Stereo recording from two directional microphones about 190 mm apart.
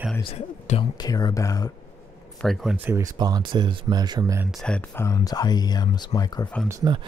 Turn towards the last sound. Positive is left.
turn(degrees=-20)  # may be behind; listen again after turning